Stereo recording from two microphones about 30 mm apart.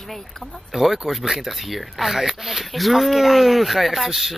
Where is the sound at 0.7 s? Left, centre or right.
Centre.